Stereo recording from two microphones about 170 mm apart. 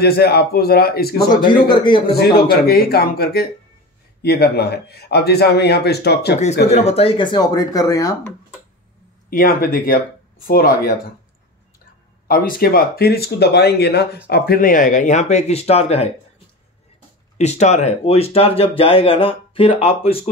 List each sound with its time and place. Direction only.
0.0 s speech: 70° left (ahead or behind)
1.3 s speech: 25° left (ahead or behind)
2.6 s a man's voice: 65° left (ahead or behind)
6.7 s speech: 40° left (ahead or behind); by 8.3 s 20° left (ahead or behind)
9.3 s speech: 55° left (ahead or behind)
12.3 s speech: 60° left (ahead or behind); by 16.1 s 35° left (ahead or behind)
17.4 s speech: 40° left (ahead or behind)